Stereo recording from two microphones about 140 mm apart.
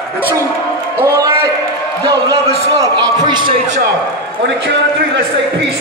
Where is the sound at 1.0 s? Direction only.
20° right (ahead or behind).